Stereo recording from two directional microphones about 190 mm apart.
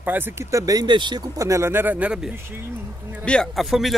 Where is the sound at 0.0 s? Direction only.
10° right (ahead or behind).